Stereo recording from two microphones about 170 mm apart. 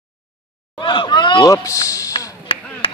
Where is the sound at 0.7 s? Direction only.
30° left (ahead or behind).